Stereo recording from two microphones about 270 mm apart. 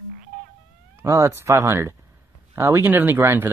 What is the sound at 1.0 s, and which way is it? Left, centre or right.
Speech, centre.